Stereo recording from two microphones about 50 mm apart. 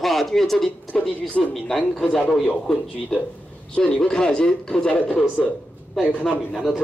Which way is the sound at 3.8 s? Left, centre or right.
Centre.